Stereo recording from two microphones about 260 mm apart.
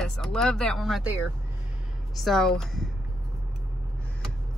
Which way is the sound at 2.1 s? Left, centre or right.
Centre.